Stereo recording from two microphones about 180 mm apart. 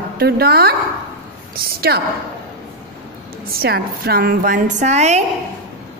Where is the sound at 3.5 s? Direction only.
60° right (ahead or behind); by 5.2 s 40° right (ahead or behind).